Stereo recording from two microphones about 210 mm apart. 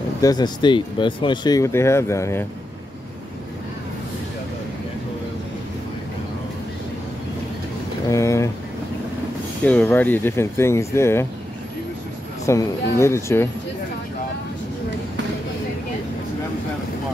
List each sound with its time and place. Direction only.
0.2 s speech: 20° left (ahead or behind)
8.1 s a sound: 15° left (ahead or behind)
9.7 s speech: 5° left (ahead or behind)
12.4 s speech: 15° left (ahead or behind)